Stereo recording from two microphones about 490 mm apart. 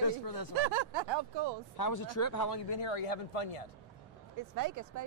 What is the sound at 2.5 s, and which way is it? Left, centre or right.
Speech, left.